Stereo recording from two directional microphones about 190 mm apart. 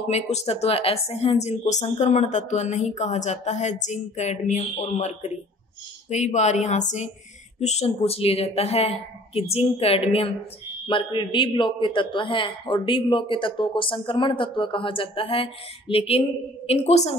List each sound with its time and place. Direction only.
0.1 s a man's voice: 35° left (ahead or behind)